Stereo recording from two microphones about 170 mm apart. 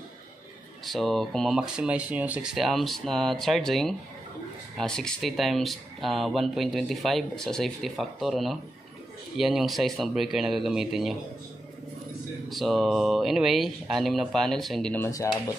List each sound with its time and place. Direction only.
0.8 s speech: centre (ahead or behind)
12.4 s speech: centre (ahead or behind)
15.0 s speech: 20° left (ahead or behind)